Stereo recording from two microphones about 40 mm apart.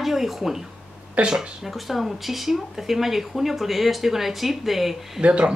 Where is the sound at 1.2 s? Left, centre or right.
Right.